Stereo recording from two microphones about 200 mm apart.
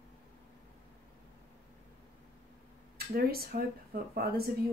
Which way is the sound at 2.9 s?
50° right (ahead or behind).